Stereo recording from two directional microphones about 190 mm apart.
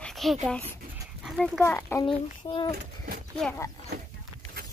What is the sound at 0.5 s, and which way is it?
A child's voice, 10° left (ahead or behind).